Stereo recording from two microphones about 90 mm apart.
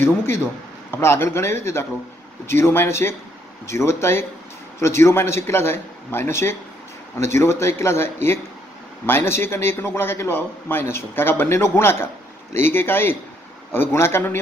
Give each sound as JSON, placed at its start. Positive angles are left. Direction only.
{"t": 0.9, "sound": "a man's voice", "side_deg": 30}